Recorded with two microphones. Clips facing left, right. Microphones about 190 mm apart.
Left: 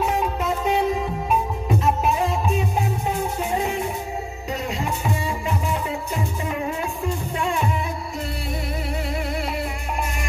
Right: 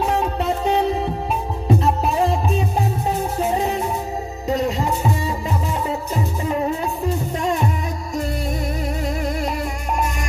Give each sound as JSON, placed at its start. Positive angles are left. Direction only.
{"t": 0.0, "sound": "music", "side_deg": -30}
{"t": 9.5, "sound": "music", "side_deg": -45}